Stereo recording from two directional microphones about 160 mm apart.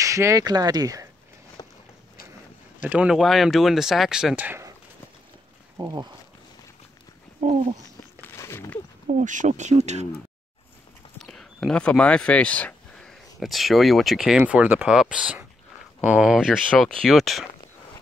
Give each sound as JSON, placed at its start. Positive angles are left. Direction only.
{"t": 0.0, "sound": "speech", "side_deg": -20}
{"t": 1.6, "sound": "walk", "side_deg": 25}
{"t": 2.8, "sound": "speech", "side_deg": -10}
{"t": 5.8, "sound": "speech", "side_deg": -25}
{"t": 7.4, "sound": "speech", "side_deg": -50}
{"t": 8.2, "sound": "a sound", "side_deg": 15}
{"t": 9.0, "sound": "speech", "side_deg": -50}
{"t": 11.1, "sound": "speech", "side_deg": 0}